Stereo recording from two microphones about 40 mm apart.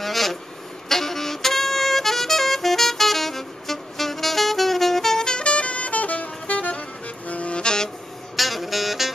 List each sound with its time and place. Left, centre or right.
0.0 s vehicle: centre
0.8 s music: centre
8.4 s saxophone: centre